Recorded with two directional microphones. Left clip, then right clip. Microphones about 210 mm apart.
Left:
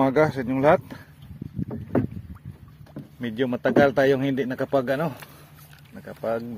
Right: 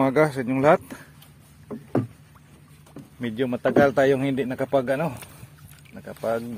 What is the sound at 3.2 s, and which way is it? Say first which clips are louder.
A man's voice: even; 10° right (ahead or behind).